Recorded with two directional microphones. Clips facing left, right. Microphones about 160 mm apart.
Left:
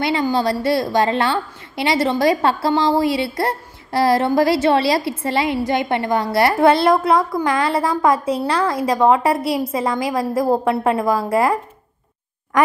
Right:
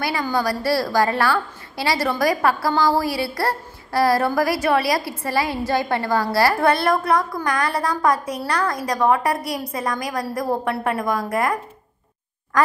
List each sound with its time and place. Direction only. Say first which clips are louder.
0.0 s a woman's voice: left 4 dB; 25° left (ahead or behind)